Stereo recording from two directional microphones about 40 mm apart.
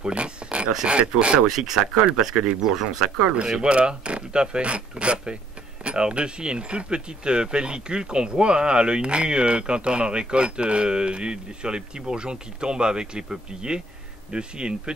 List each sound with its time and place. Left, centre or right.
0.0 s a sound: right
0.8 s speech: right
1.5 s speech: centre
3.4 s speech: right